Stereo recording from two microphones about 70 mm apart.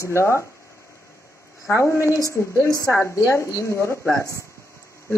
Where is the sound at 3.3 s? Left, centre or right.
Left.